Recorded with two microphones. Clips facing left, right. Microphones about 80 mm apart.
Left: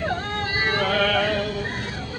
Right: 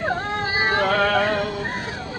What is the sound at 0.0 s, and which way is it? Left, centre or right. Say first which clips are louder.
Music: right 2 dB; right.